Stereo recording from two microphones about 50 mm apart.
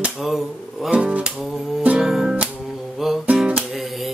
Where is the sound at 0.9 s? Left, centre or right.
Right.